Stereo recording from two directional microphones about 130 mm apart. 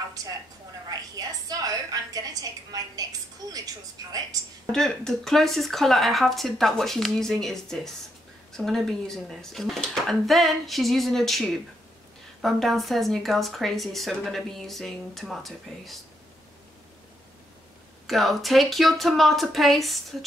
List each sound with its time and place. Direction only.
0.8 s a woman's voice: 30° right (ahead or behind)
4.7 s speech: 5° left (ahead or behind)
18.0 s speech: centre (ahead or behind)